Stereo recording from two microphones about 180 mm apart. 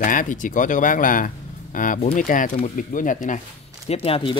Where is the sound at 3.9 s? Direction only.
30° left (ahead or behind).